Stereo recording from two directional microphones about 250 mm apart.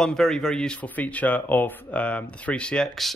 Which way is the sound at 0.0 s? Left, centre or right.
Centre.